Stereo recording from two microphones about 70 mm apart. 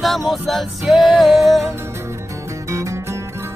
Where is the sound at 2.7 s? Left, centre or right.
Right.